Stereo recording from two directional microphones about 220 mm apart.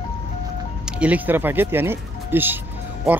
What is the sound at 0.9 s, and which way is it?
Speech, 5° right (ahead or behind).